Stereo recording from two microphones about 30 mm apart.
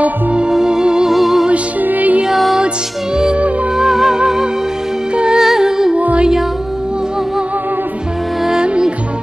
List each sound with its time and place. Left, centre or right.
0.5 s music: centre
1.1 s music: centre
1.8 s music: right
3.7 s music: centre
5.1 s music: right
5.4 s music: centre